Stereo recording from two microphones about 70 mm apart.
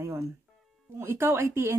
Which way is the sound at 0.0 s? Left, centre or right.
Right.